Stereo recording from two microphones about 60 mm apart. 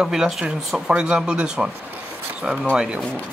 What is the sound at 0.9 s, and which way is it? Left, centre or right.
Speech, centre.